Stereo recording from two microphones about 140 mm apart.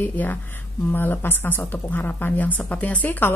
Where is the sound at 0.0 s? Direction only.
15° left (ahead or behind).